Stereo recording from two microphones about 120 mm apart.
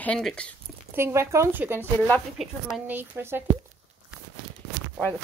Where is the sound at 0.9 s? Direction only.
20° right (ahead or behind).